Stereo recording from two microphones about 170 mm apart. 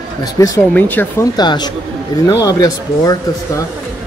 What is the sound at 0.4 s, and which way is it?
Speech, 20° left (ahead or behind).